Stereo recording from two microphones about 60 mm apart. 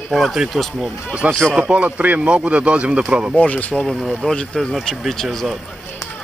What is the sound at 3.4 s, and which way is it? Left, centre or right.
Speech, left.